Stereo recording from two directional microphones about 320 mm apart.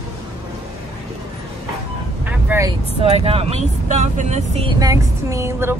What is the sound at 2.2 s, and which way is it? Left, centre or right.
Speech, centre.